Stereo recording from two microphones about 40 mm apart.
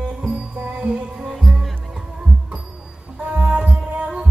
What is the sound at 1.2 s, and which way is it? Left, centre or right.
Music, centre.